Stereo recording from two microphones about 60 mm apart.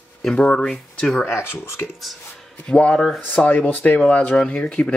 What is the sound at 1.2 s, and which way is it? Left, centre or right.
Speech, left.